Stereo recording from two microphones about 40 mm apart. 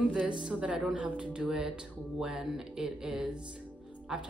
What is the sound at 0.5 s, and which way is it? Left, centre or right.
Speech, right.